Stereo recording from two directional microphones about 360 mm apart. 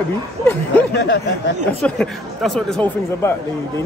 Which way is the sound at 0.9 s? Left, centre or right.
Left.